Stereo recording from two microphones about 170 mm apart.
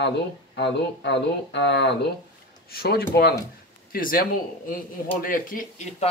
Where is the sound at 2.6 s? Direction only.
65° left (ahead or behind).